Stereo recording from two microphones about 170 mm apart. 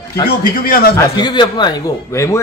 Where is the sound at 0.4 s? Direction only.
60° left (ahead or behind).